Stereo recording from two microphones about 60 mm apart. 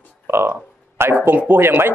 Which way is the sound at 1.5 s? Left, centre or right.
Right.